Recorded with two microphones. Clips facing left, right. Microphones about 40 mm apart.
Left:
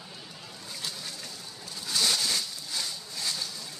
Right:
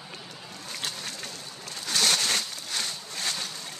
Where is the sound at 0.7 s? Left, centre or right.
Right.